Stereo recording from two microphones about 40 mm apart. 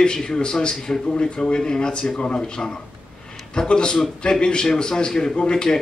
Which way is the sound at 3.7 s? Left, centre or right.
Left.